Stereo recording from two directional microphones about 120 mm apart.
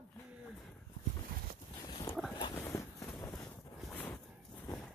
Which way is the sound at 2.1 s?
25° left (ahead or behind).